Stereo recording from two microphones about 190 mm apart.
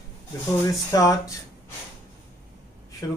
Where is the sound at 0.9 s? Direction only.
15° left (ahead or behind).